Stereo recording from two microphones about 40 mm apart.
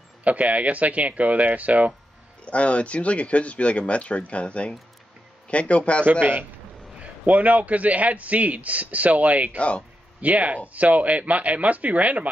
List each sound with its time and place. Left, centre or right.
0.2 s a man's voice: right
2.4 s speech: left
6.0 s a man's voice: right
7.0 s a man's voice: right
9.6 s speech: left
10.2 s a man's voice: right